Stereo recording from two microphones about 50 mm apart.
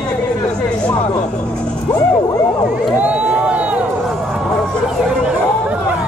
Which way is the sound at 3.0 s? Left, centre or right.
Right.